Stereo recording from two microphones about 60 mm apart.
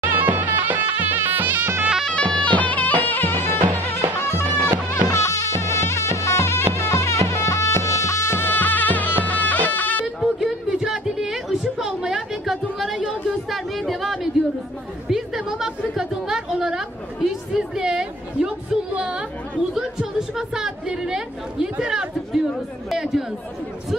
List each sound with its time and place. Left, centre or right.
0.0 s music: right
2.0 s music: centre; by 3.6 s left
4.3 s music: right
5.1 s music: left
10.2 s a sound: centre
15.0 s chatter: centre
16.0 s a woman's voice: centre